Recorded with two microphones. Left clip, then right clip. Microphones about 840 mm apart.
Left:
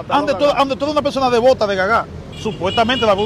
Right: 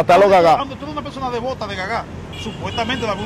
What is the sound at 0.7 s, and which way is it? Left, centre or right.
Speech, left.